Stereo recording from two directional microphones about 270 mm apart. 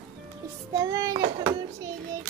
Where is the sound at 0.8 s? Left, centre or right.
Centre.